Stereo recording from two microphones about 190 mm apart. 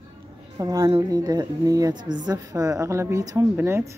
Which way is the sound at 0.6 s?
20° right (ahead or behind).